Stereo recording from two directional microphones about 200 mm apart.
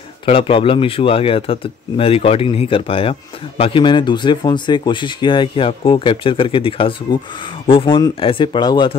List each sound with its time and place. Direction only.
0.2 s speech: 25° left (ahead or behind)